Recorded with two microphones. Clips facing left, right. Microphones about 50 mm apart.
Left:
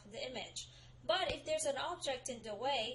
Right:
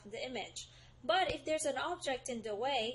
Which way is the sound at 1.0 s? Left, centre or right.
Right.